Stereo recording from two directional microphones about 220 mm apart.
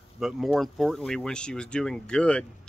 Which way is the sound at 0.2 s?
Centre (ahead or behind).